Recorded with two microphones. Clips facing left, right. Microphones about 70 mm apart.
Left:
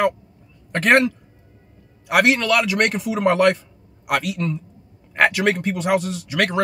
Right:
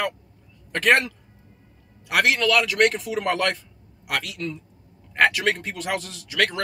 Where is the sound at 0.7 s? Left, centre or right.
Centre.